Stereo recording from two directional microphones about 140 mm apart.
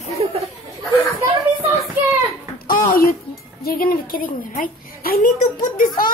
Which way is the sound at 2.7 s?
90° left.